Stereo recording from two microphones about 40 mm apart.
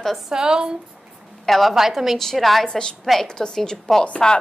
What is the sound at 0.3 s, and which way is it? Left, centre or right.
Speech, centre.